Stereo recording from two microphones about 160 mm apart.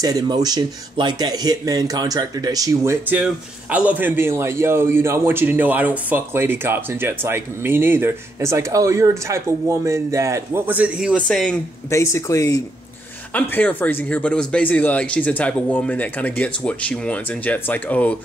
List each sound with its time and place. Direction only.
0.0 s a man's voice: 25° right (ahead or behind); by 11.2 s 5° right (ahead or behind)
11.2 s speech: 5° left (ahead or behind)
11.9 s speech: 20° left (ahead or behind)
13.3 s speech: 10° left (ahead or behind)